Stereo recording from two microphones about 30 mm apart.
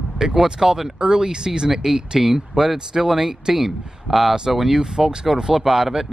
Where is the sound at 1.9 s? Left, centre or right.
Centre.